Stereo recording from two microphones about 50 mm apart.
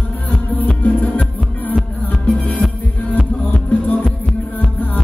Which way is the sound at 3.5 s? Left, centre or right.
Left.